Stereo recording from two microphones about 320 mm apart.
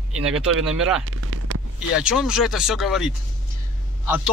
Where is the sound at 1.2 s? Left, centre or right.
Right.